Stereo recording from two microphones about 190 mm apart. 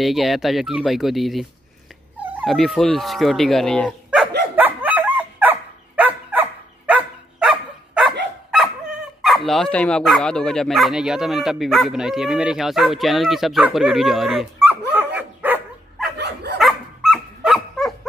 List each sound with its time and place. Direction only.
0.0 s speech: centre (ahead or behind)
4.6 s dog: 10° right (ahead or behind)
9.2 s speech: centre (ahead or behind)
15.1 s dog: 10° right (ahead or behind)
16.2 s dog: 60° right (ahead or behind)
16.5 s dog: centre (ahead or behind)